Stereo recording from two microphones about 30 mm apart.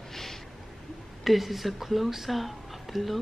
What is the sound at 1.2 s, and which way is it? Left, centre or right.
Speech, centre.